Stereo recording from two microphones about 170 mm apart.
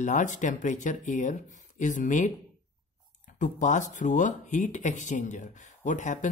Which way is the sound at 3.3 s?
45° left (ahead or behind).